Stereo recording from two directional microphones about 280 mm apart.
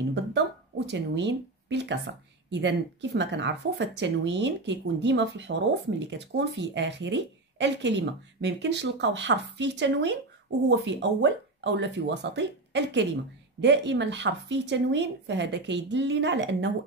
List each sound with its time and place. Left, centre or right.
0.1 s speech: right